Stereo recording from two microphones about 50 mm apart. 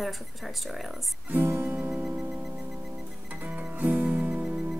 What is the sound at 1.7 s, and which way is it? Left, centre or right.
Music, right.